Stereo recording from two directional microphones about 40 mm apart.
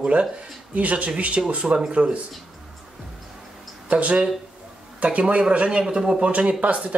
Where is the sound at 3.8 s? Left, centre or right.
Right.